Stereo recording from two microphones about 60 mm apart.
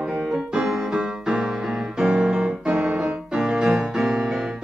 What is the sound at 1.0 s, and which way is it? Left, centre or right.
Music, centre.